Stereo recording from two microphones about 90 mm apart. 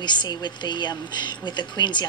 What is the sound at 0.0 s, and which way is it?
Speech, 55° left (ahead or behind).